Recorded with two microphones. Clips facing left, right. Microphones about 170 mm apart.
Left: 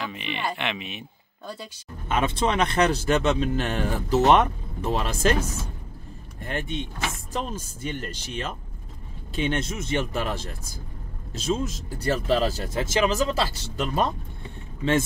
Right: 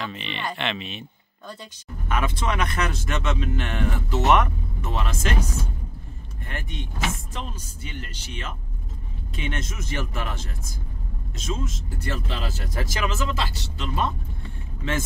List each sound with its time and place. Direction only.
0.0 s speech: 10° left (ahead or behind)
2.0 s speech: 30° left (ahead or behind)
6.4 s speech: 30° left (ahead or behind)
7.3 s speech: 45° left (ahead or behind)
12.6 s speech: 25° left (ahead or behind)